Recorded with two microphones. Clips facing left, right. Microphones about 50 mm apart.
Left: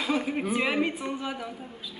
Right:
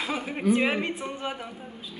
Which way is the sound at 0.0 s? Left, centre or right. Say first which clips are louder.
Even; centre.